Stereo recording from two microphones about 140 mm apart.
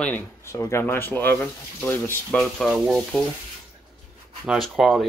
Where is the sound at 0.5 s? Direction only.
20° left (ahead or behind).